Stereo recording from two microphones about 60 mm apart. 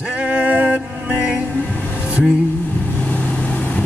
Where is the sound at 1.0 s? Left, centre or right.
Centre.